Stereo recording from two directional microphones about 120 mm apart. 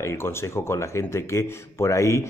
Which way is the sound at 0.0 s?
20° left (ahead or behind).